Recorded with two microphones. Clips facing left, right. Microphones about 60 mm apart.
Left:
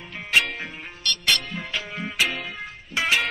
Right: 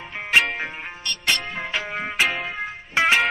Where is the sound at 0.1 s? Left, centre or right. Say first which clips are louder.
Right 3 dB; right.